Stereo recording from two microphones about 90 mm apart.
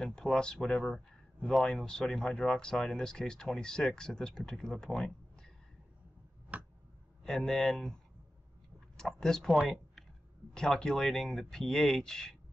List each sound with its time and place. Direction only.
0.0 s speech: 5° left (ahead or behind)
6.5 s tick: 20° right (ahead or behind)
7.2 s speech: 5° left (ahead or behind)